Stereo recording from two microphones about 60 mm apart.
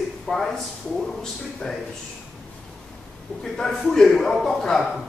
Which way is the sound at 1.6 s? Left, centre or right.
Centre.